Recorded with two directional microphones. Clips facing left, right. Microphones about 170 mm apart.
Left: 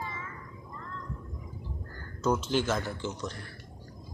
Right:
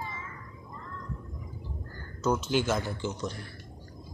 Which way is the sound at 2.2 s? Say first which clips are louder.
Even; 5° right (ahead or behind).